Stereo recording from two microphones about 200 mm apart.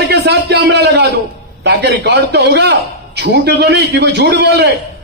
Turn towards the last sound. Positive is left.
turn(degrees=-55)  # may be behind; listen again after turning